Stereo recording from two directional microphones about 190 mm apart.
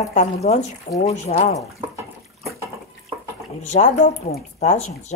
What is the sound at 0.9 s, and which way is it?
Speech, 50° left (ahead or behind).